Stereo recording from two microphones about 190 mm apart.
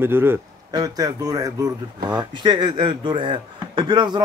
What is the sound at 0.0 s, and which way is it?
Speech, 10° right (ahead or behind).